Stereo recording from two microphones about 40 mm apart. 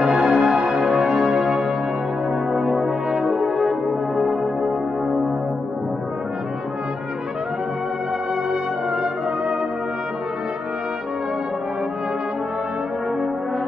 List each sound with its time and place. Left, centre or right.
0.1 s music: centre
1.0 s music: centre
1.3 s music: centre
2.5 s brass instrument: centre